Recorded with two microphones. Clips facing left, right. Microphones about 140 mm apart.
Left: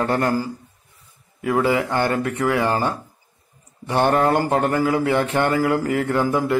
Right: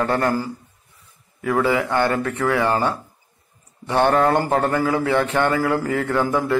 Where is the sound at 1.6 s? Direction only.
20° left (ahead or behind).